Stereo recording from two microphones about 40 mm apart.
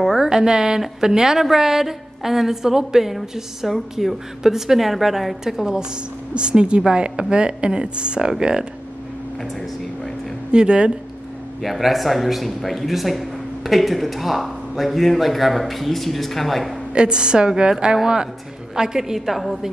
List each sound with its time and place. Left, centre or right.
0.2 s a woman's voice: centre
6.3 s speech: right
9.4 s a sound: centre
10.5 s speech: right
11.6 s speech: centre
16.9 s a woman's voice: right; by 19.7 s centre